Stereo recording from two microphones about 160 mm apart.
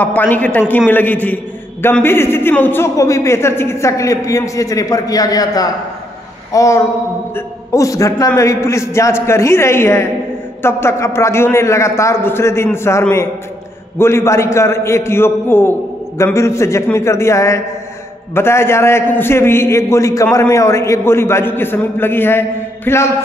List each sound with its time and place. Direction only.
0.0 s a man's voice: 10° left (ahead or behind)